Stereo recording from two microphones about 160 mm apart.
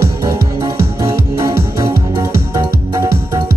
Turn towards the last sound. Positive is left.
turn(degrees=-25)  # may be behind; listen again after turning